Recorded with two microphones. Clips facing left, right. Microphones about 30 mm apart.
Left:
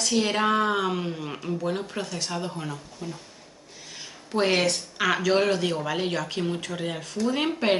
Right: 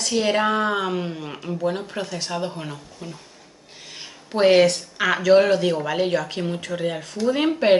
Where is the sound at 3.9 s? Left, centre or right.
Right.